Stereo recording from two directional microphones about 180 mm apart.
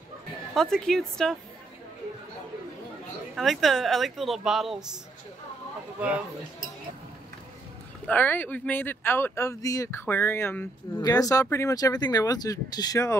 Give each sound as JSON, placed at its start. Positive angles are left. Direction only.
{"t": 0.6, "sound": "speech", "side_deg": 5}
{"t": 3.3, "sound": "speech", "side_deg": 0}
{"t": 8.1, "sound": "speech", "side_deg": 10}